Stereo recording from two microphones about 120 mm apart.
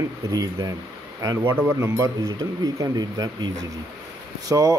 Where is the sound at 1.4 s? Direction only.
20° right (ahead or behind).